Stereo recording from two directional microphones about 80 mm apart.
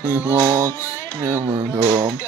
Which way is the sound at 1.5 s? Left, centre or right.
Right.